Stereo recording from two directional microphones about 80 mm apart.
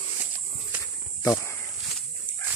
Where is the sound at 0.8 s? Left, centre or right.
Left.